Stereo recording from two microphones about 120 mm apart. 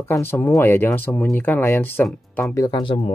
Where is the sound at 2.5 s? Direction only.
30° left (ahead or behind).